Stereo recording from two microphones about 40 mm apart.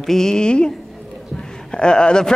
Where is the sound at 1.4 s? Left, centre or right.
Centre.